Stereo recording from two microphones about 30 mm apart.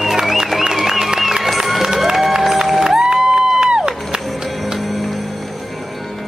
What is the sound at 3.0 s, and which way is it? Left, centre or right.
Music, right.